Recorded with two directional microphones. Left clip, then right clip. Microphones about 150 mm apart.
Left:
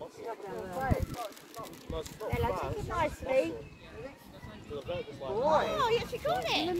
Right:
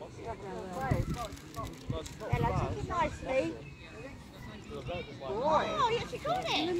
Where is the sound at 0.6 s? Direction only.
55° left (ahead or behind).